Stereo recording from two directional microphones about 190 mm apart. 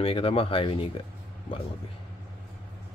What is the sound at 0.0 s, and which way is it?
Speech, 30° left (ahead or behind).